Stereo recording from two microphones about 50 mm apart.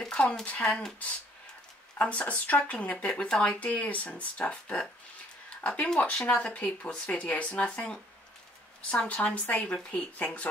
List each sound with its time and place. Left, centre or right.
0.0 s speech: centre
2.0 s speech: left